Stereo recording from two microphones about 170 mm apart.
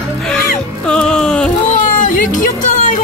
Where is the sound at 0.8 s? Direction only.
5° left (ahead or behind).